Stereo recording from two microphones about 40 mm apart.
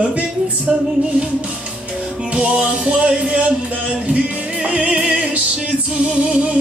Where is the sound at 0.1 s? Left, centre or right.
Right.